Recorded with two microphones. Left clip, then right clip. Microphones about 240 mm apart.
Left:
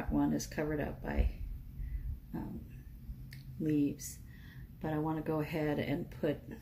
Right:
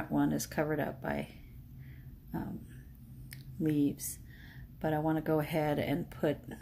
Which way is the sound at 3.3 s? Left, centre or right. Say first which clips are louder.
Right 1 dB; right.